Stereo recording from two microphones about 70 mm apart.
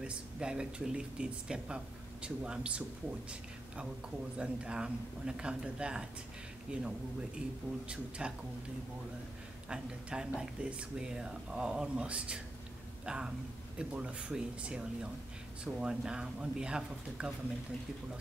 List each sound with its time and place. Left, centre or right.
0.0 s speech: centre
8.2 s speech: centre
9.7 s speech: centre